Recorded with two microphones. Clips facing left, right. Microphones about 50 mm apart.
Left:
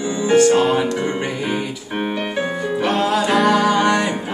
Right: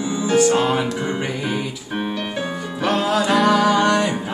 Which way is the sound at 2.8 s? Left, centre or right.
Centre.